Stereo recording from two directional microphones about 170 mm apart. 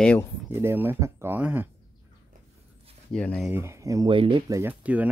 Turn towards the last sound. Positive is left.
turn(degrees=-10)  # may be behind; listen again after turning